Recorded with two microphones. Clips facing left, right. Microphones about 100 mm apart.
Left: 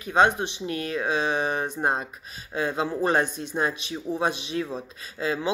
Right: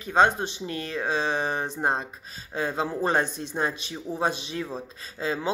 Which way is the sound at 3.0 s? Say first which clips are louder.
Left 2 dB; 35° right (ahead or behind).